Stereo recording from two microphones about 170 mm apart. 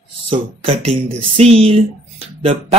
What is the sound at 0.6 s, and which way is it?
Speech, 30° right (ahead or behind).